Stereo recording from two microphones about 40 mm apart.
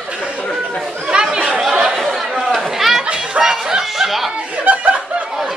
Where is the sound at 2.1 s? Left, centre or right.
Centre.